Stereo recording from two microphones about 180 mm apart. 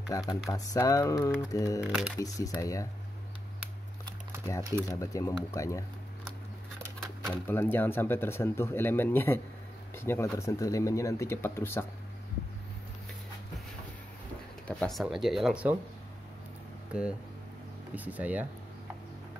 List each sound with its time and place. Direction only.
0.1 s speech: 20° left (ahead or behind)
1.8 s speech: 5° right (ahead or behind)
2.1 s speech: 20° left (ahead or behind)
4.8 s speech: 15° left (ahead or behind)
7.2 s speech: 10° left (ahead or behind)
14.7 s speech: 5° left (ahead or behind)
17.9 s speech: 10° right (ahead or behind)